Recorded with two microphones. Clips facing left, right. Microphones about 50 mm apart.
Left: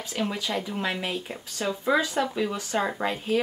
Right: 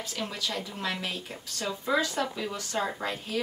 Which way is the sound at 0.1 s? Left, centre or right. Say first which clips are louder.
Left 7 dB; centre.